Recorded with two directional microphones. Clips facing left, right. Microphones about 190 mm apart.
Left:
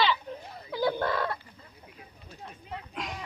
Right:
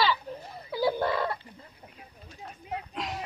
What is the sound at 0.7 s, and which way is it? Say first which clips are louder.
Fowl: right 1 dB; 10° right (ahead or behind).